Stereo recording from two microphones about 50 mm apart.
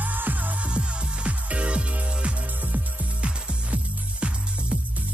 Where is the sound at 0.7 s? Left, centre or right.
Right.